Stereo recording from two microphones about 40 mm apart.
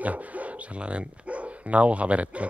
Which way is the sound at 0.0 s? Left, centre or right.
Right.